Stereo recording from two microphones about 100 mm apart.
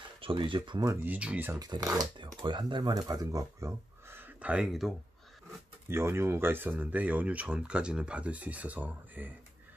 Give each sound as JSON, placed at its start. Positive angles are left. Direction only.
{"t": 0.2, "sound": "speech", "side_deg": -60}
{"t": 1.0, "sound": "speech", "side_deg": -15}
{"t": 1.6, "sound": "speech", "side_deg": -35}
{"t": 2.4, "sound": "speech", "side_deg": -50}
{"t": 4.2, "sound": "a sound", "side_deg": -15}
{"t": 5.9, "sound": "speech", "side_deg": -25}